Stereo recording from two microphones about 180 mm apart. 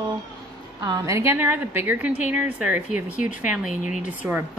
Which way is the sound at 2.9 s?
45° left (ahead or behind).